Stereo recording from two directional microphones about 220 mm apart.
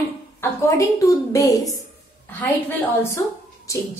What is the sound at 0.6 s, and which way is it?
A woman's voice, 15° left (ahead or behind).